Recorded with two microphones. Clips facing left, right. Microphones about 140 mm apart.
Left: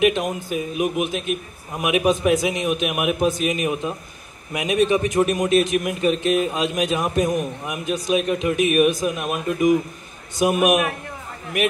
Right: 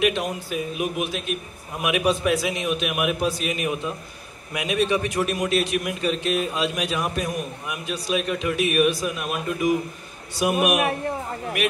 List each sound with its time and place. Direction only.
0.0 s speech: 20° left (ahead or behind)
10.8 s a man's voice: 30° right (ahead or behind)